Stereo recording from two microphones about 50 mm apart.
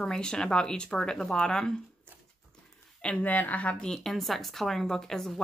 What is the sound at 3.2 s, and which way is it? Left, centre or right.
Speech, left.